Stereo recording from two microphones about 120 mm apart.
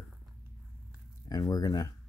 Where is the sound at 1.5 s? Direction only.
30° left (ahead or behind).